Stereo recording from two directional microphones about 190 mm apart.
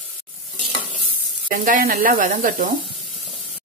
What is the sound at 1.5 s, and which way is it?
Speech, 45° right (ahead or behind).